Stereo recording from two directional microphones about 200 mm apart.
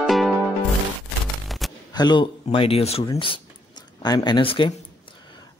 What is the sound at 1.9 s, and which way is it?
Speech, 20° left (ahead or behind).